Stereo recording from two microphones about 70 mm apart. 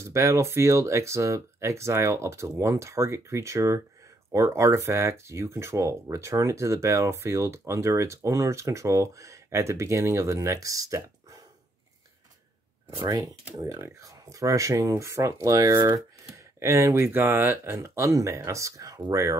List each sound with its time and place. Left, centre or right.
0.0 s speech: right
13.0 s speech: right
16.5 s speech: right